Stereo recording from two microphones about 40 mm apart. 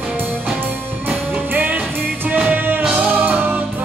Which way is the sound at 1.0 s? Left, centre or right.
Right.